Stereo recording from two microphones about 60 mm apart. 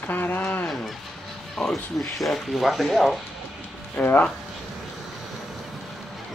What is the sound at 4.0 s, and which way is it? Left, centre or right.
Speech, left.